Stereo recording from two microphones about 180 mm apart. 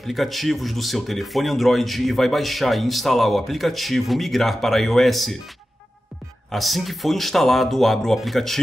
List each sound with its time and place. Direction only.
0.0 s speech: centre (ahead or behind)
6.5 s speech: centre (ahead or behind)